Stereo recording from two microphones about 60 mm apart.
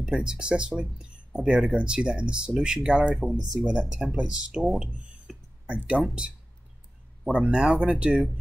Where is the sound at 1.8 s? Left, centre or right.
Centre.